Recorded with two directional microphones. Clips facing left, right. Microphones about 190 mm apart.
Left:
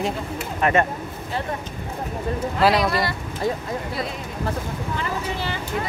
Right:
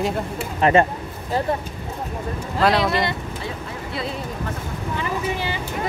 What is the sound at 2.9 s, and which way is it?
Speech, 20° right (ahead or behind).